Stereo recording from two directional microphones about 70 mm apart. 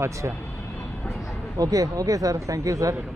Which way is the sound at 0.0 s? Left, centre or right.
Right.